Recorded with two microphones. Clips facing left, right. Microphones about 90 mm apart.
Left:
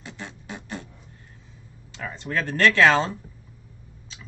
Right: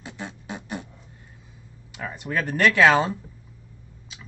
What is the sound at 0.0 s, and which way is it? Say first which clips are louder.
Beatboxing: right 2 dB; 15° right (ahead or behind).